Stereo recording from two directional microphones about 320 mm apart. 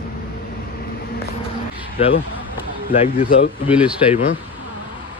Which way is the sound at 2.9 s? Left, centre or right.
Left.